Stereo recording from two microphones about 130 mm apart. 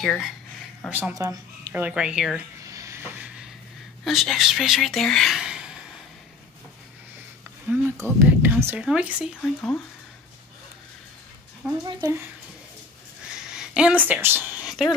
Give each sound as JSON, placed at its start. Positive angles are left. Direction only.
{"t": 0.0, "sound": "speech", "side_deg": 5}
{"t": 0.8, "sound": "speech", "side_deg": -10}
{"t": 1.1, "sound": "a woman's voice", "side_deg": -30}
{"t": 1.7, "sound": "speech", "side_deg": -10}
{"t": 2.6, "sound": "a sound", "side_deg": -25}
{"t": 4.0, "sound": "speech", "side_deg": 0}
{"t": 8.0, "sound": "speech", "side_deg": -15}
{"t": 9.4, "sound": "speech", "side_deg": 10}
{"t": 11.8, "sound": "speech", "side_deg": -35}
{"t": 13.3, "sound": "a sound", "side_deg": -5}
{"t": 14.0, "sound": "speech", "side_deg": -15}